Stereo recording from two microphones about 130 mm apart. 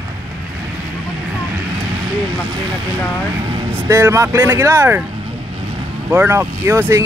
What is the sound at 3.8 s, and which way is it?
Speech, 20° right (ahead or behind).